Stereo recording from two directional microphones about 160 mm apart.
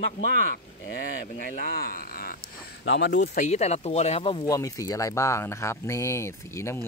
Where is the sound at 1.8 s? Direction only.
65° left (ahead or behind).